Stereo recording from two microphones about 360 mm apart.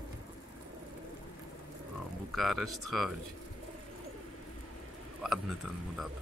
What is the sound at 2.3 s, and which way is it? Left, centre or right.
Speech, centre.